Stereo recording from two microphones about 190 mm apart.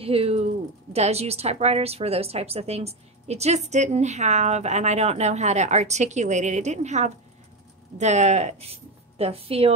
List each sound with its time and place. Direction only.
0.0 s a woman's voice: 30° right (ahead or behind)